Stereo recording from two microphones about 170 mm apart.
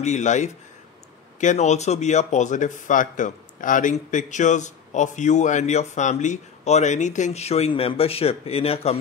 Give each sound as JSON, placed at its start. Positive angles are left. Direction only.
{"t": 0.0, "sound": "speech", "side_deg": 45}